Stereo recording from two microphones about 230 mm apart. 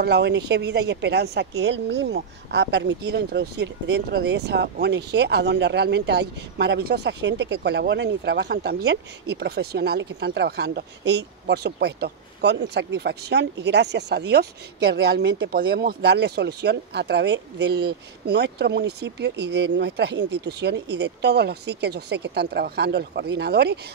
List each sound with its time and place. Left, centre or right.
0.0 s speech: right